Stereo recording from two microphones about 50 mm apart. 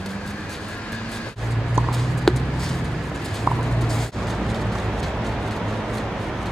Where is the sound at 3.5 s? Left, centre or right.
Right.